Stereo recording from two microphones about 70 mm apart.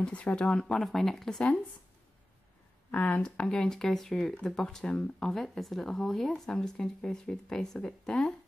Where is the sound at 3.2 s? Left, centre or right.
Centre.